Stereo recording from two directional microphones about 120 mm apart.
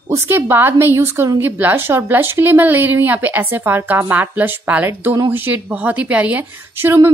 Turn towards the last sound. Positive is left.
turn(degrees=-20)  # may be behind; listen again after turning